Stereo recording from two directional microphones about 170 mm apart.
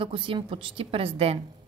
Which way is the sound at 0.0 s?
30° right (ahead or behind).